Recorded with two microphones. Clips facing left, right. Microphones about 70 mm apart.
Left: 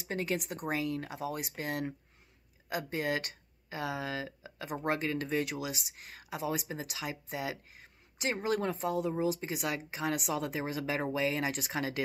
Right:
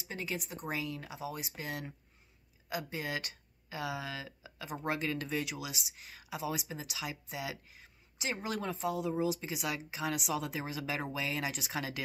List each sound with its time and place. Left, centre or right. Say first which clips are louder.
0.0 s speech: left 5 dB; left